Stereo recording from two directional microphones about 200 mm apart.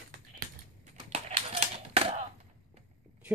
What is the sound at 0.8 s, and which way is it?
Typewriter, 30° right (ahead or behind).